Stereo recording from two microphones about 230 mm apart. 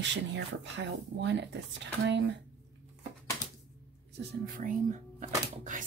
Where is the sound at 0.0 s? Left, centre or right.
Right.